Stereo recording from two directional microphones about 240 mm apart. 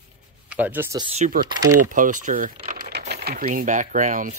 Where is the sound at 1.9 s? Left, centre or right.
Right.